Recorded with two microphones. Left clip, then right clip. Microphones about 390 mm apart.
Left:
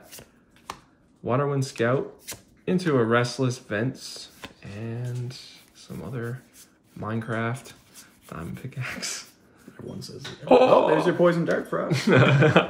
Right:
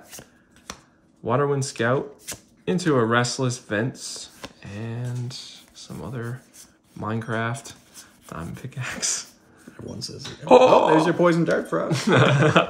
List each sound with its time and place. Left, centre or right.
1.2 s speech: centre
10.4 s speech: centre
11.1 s speech: right
11.9 s a man's voice: centre